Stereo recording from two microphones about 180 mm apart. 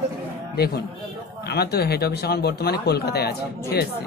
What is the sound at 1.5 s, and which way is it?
Speech, 60° left (ahead or behind).